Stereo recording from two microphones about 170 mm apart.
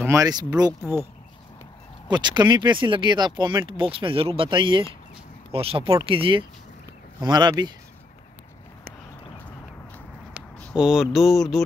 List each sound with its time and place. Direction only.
0.0 s speech: 20° right (ahead or behind)
2.0 s speech: 25° right (ahead or behind)
10.6 s a sound: centre (ahead or behind)